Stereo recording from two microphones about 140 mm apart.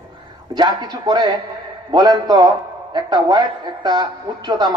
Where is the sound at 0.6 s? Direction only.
30° right (ahead or behind).